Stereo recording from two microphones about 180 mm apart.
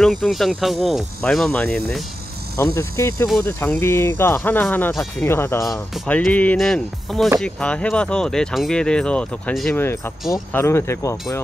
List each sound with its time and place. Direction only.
0.0 s speech: centre (ahead or behind)
2.5 s speech: 15° left (ahead or behind)